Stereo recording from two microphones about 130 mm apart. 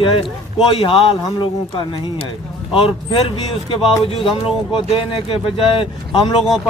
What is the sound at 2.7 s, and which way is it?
Speech, 45° left (ahead or behind).